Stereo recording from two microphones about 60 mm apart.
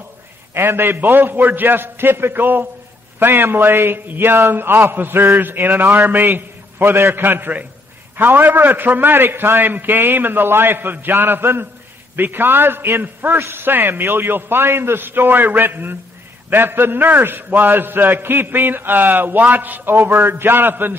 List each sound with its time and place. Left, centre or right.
0.6 s a man's voice: right